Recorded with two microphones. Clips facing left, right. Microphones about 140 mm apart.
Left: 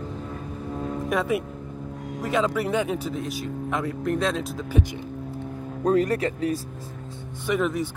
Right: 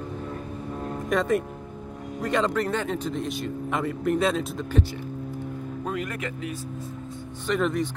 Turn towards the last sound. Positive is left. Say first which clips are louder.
# even
turn(degrees=5)  # may be behind; listen again after turning